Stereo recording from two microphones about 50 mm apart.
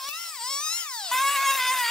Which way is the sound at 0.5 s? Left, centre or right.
Centre.